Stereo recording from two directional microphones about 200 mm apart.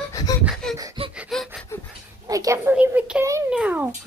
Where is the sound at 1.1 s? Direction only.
Centre (ahead or behind).